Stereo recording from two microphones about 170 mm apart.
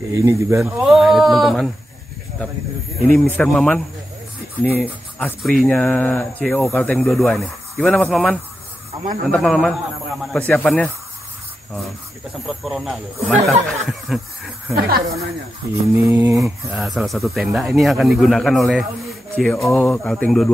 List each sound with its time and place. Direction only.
0.1 s speech: 15° right (ahead or behind); by 1.7 s centre (ahead or behind)
3.1 s speech: 10° left (ahead or behind)
5.2 s speech: centre (ahead or behind)
12.4 s speech: centre (ahead or behind)
14.8 s speech: 65° right (ahead or behind)
15.9 s mantra: 15° right (ahead or behind)
16.4 s speech: centre (ahead or behind)